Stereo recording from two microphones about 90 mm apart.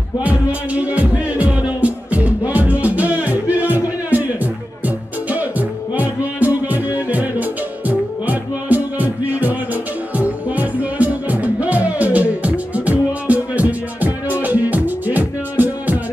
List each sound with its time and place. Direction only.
0.2 s music: 15° right (ahead or behind)